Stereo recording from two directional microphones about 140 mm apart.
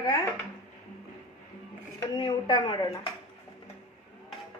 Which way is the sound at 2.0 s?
30° left (ahead or behind).